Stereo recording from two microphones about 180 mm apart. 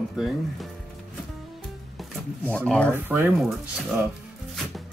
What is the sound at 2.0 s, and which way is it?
Speech, 5° left (ahead or behind).